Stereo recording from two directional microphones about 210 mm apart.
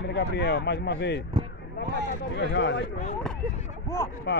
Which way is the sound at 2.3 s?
55° left (ahead or behind).